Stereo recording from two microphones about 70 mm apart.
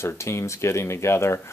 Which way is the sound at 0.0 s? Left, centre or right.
Left.